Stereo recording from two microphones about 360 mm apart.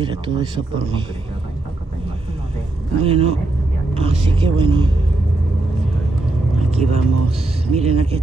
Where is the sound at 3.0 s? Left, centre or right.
Centre.